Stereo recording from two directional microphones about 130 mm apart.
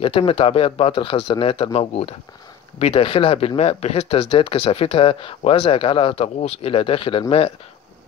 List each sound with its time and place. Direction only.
0.0 s speech: 45° left (ahead or behind)